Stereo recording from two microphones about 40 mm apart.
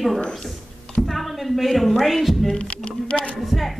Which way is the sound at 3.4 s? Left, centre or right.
Centre.